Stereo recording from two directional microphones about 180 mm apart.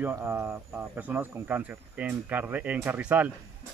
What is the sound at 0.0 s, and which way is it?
Speech, 10° right (ahead or behind).